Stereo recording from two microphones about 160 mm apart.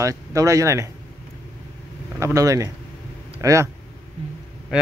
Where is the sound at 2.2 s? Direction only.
20° right (ahead or behind).